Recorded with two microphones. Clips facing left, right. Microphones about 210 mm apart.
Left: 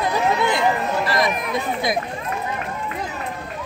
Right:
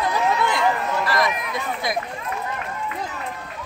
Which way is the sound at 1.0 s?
25° left (ahead or behind).